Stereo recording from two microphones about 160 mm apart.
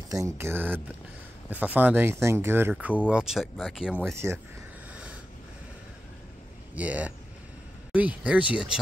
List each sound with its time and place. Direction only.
0.1 s speech: 15° right (ahead or behind); by 3.9 s centre (ahead or behind)
4.0 s speech: 15° right (ahead or behind)
6.7 s speech: 10° right (ahead or behind)